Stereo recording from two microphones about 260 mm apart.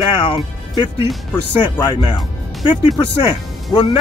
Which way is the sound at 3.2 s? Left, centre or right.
Centre.